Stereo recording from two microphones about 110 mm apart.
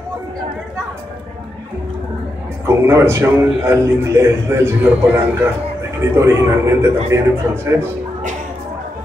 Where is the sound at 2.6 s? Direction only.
25° right (ahead or behind).